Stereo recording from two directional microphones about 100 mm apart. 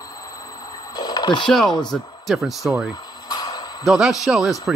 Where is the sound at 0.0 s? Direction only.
35° left (ahead or behind).